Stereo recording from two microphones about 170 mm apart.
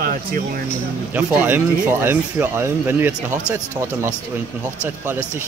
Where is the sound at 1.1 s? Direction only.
10° right (ahead or behind).